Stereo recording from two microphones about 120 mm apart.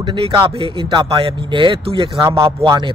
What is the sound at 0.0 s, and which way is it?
Speech, 45° right (ahead or behind).